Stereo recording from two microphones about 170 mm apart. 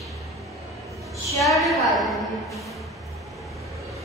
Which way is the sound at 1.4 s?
Centre (ahead or behind).